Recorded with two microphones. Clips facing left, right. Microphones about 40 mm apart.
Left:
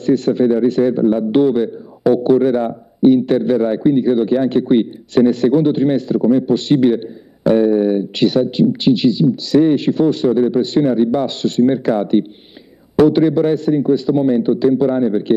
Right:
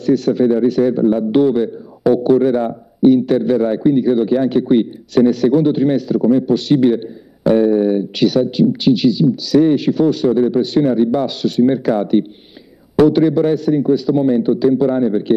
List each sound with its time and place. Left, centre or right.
0.0 s a man's voice: centre